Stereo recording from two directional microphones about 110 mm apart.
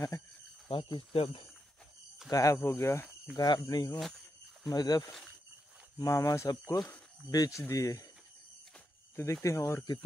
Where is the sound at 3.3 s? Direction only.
40° left (ahead or behind).